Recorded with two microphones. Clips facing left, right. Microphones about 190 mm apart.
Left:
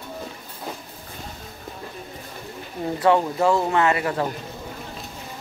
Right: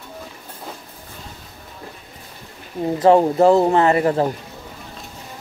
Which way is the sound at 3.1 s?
40° right (ahead or behind).